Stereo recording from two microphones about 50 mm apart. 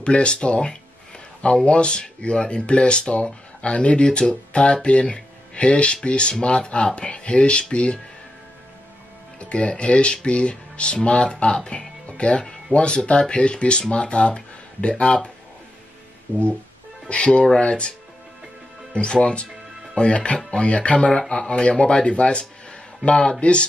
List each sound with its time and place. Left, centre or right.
0.0 s speech: left
9.4 s speech: left
16.3 s music: right
17.1 s speech: left
18.9 s speech: left
21.1 s speech: centre